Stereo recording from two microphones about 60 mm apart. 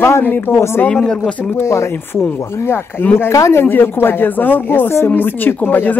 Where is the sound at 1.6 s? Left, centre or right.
Left.